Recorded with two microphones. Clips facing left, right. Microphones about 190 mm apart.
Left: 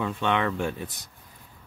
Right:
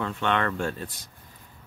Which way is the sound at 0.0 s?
15° left (ahead or behind).